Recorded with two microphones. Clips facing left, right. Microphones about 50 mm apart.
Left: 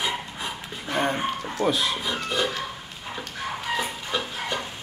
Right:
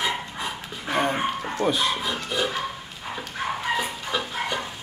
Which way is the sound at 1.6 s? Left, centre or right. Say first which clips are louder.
Even; centre.